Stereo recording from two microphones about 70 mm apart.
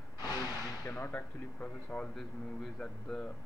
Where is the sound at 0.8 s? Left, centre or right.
Left.